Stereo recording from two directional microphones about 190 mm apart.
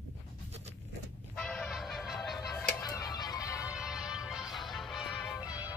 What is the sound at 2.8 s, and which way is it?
Music, 20° left (ahead or behind).